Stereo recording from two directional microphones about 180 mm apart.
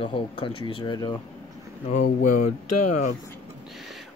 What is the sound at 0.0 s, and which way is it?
Speech, 30° left (ahead or behind).